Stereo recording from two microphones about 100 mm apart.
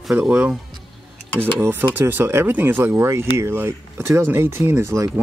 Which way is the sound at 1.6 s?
20° right (ahead or behind).